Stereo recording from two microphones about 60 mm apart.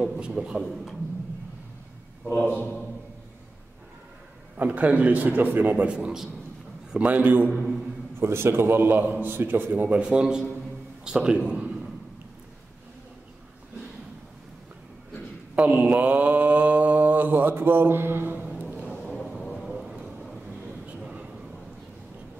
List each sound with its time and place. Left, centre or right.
0.1 s a man's voice: centre
0.6 s speech: centre
2.3 s a man's voice: left
4.6 s mantra: right
5.9 s a man's voice: centre
7.0 s mantra: right
7.5 s speech: centre
8.2 s a man's voice: right
9.9 s a man's voice: centre
15.5 s mantra: right
18.6 s music: right
19.4 s a sound: centre